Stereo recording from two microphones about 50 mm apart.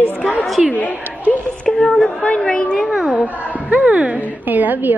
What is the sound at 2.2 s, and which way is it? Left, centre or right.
Speech, left.